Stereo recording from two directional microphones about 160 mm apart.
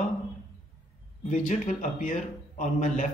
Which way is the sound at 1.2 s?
55° left (ahead or behind).